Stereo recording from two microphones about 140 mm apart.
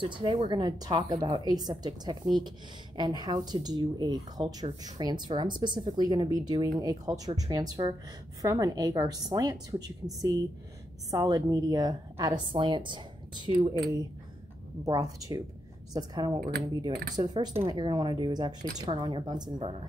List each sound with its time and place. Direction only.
0.0 s a woman's voice: 40° right (ahead or behind)
14.9 s a woman's voice: 25° right (ahead or behind)